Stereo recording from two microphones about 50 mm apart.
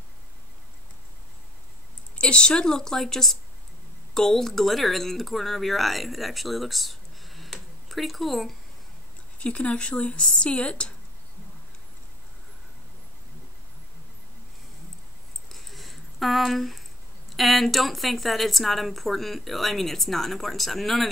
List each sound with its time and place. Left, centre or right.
2.1 s a woman's voice: centre
9.4 s speech: left
15.5 s a sound: centre
17.4 s a woman's voice: centre